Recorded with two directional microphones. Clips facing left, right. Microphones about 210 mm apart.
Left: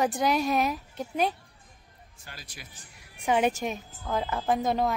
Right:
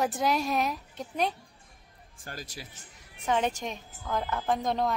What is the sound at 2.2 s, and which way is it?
Speech, 45° right (ahead or behind).